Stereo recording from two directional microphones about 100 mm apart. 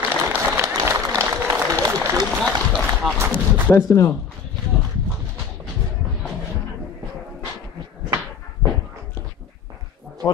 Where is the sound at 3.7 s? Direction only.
30° left (ahead or behind).